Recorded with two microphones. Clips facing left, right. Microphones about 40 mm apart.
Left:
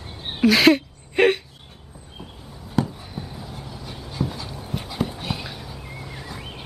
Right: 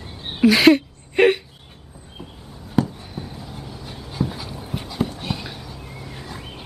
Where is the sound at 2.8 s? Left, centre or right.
Centre.